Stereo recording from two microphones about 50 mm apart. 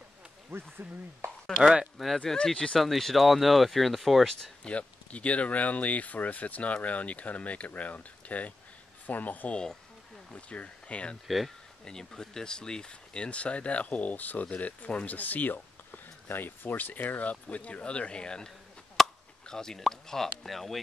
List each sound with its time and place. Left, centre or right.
0.5 s speech: right
1.6 s speech: centre
2.4 s speech: centre
2.8 s speech: centre
4.6 s speech: left
9.5 s speech: centre
11.2 s speech: centre
11.8 s speech: centre
19.0 s chop: centre
19.4 s speech: centre